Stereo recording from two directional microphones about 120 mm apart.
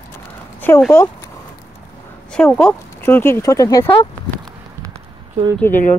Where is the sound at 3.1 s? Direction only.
20° left (ahead or behind).